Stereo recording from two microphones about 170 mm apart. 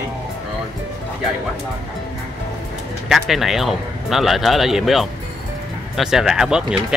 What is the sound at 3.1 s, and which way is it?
Speech, centre (ahead or behind).